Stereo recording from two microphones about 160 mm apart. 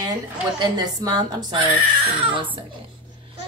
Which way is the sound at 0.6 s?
25° right (ahead or behind).